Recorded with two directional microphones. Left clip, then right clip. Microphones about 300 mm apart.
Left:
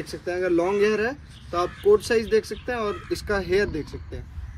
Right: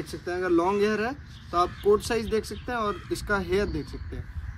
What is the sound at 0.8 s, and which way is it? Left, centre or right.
Speech, right.